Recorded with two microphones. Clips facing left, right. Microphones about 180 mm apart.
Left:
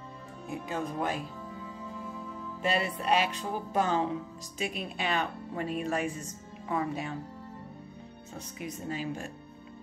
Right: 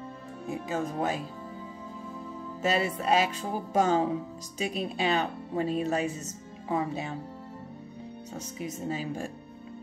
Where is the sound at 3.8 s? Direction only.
35° right (ahead or behind).